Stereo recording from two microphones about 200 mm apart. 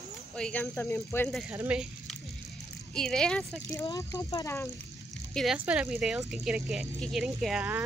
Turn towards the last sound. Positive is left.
turn(degrees=-5)  # may be behind; listen again after turning